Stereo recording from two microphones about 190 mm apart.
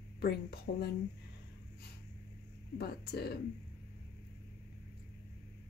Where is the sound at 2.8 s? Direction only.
55° left (ahead or behind).